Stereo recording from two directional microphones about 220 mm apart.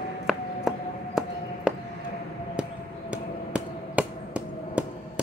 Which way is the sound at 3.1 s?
5° right (ahead or behind).